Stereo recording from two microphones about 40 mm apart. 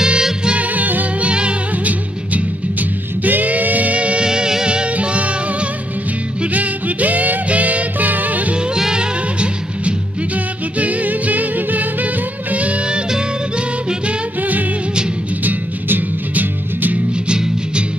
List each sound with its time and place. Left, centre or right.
0.0 s music: right
0.7 s music: right
1.2 s music: right
3.3 s music: right
4.3 s music: centre
4.9 s music: right
6.5 s music: right
8.7 s music: centre
9.4 s music: right
12.8 s music: right
15.4 s music: right